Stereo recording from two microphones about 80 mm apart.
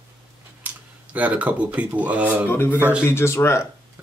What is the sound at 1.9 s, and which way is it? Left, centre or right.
Speech, centre.